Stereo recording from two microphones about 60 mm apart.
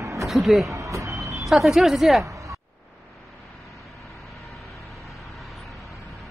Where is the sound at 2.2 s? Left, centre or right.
Right.